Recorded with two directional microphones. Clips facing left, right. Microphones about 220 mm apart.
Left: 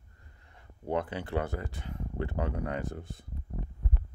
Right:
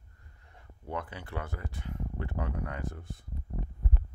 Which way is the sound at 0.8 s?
25° left (ahead or behind).